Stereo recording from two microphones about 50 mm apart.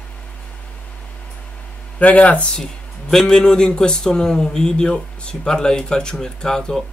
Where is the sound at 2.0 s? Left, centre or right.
Left.